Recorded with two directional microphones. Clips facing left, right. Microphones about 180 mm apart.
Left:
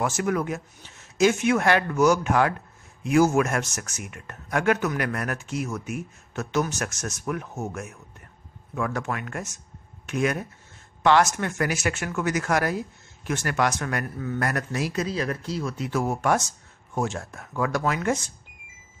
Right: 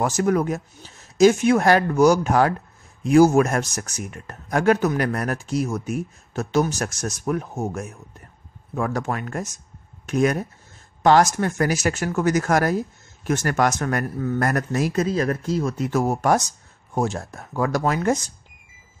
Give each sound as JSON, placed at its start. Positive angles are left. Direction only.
{"t": 0.0, "sound": "speech", "side_deg": -35}